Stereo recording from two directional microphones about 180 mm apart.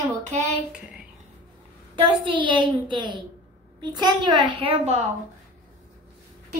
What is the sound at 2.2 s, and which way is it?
A child's voice, 25° right (ahead or behind).